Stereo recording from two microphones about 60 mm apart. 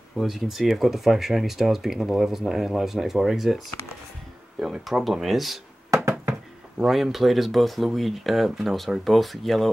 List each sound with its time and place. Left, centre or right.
0.2 s speech: centre
6.8 s speech: centre